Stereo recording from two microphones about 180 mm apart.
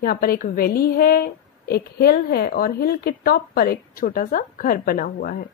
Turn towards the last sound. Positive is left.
turn(degrees=55)  # may be behind; listen again after turning